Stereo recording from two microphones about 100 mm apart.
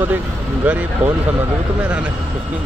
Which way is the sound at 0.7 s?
15° right (ahead or behind).